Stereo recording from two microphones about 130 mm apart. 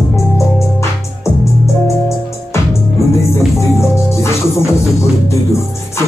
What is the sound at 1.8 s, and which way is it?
Music, 20° left (ahead or behind).